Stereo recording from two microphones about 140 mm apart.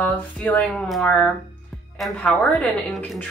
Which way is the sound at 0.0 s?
10° left (ahead or behind).